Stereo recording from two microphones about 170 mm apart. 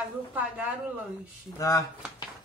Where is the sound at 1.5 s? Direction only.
20° left (ahead or behind).